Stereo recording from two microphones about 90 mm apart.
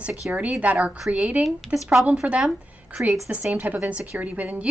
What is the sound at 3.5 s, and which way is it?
Speech, 15° right (ahead or behind).